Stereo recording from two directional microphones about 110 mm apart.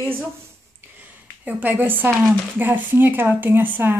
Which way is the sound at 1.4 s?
15° right (ahead or behind).